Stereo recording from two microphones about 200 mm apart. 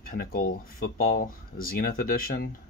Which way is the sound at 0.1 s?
45° left (ahead or behind).